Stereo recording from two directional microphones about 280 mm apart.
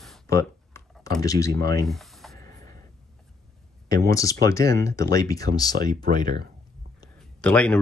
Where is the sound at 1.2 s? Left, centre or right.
Centre.